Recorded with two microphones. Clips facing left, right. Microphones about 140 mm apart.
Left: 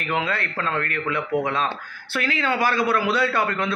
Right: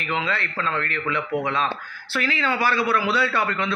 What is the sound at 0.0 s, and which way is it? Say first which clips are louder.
A man's voice: left 1 dB; 50° left (ahead or behind).